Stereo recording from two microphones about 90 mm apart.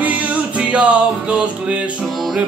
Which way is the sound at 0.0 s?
15° right (ahead or behind).